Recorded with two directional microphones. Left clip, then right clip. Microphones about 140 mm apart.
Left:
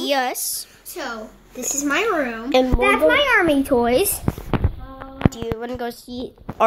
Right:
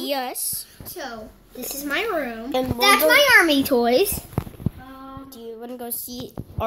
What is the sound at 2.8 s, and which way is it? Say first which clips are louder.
Speech: right 4 dB; 50° right (ahead or behind).